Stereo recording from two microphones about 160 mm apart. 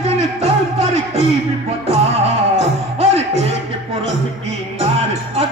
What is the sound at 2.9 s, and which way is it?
Music, 40° right (ahead or behind).